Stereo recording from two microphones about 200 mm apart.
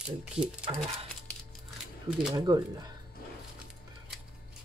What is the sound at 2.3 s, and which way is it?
Speech, 20° right (ahead or behind).